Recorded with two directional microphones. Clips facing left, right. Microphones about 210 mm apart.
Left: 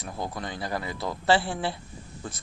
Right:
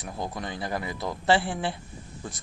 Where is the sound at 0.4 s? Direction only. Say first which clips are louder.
Even; 20° right (ahead or behind).